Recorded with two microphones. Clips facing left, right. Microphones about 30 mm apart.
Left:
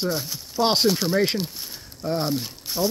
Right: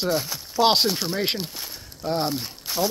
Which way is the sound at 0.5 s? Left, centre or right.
Right.